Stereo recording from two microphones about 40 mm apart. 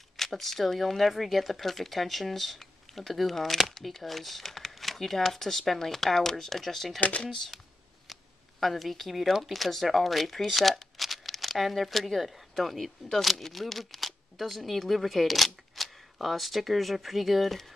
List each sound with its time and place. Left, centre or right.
0.2 s speech: centre
7.0 s speech: left
7.3 s speech: centre